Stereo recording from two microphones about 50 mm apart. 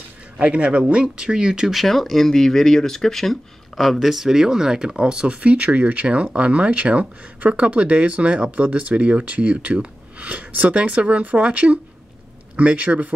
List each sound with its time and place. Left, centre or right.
0.4 s speech: right
1.7 s speech: centre; by 13.1 s right